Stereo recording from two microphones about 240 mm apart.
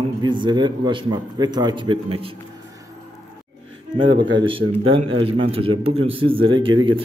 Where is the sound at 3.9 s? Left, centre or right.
Centre.